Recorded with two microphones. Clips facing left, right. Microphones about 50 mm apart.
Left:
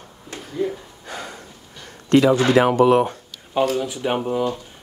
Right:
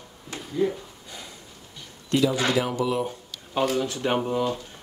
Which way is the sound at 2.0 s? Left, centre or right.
Left.